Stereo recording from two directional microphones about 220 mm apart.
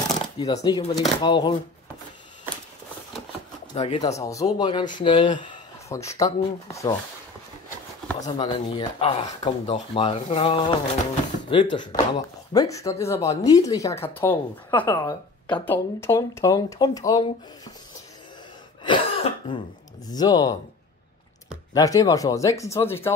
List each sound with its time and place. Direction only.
0.0 s shuffling cards: 15° left (ahead or behind)
0.7 s speech: 20° left (ahead or behind)
3.7 s speech: 25° left (ahead or behind)
8.2 s speech: 25° left (ahead or behind)
18.9 s cough: 20° left (ahead or behind)
20.1 s speech: 15° left (ahead or behind)
21.7 s speech: 15° left (ahead or behind)